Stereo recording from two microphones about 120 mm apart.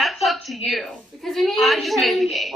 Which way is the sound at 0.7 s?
Centre (ahead or behind).